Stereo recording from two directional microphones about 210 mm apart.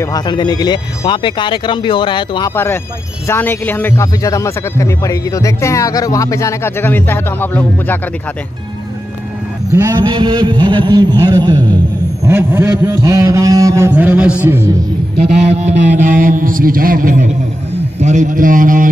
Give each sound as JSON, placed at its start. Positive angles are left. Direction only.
{"t": 0.0, "sound": "speech", "side_deg": 20}
{"t": 2.5, "sound": "a man's voice", "side_deg": 10}
{"t": 9.7, "sound": "a man's voice", "side_deg": -15}
{"t": 15.4, "sound": "a man's voice", "side_deg": -35}